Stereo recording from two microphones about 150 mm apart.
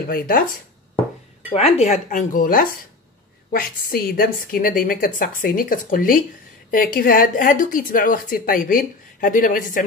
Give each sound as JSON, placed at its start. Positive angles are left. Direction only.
{"t": 0.1, "sound": "speech", "side_deg": 75}
{"t": 1.5, "sound": "speech", "side_deg": 40}
{"t": 3.5, "sound": "speech", "side_deg": 80}